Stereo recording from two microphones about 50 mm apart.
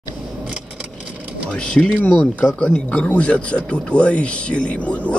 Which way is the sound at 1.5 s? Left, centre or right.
Centre.